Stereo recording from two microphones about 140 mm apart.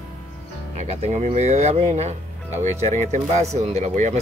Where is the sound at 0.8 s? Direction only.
50° right (ahead or behind).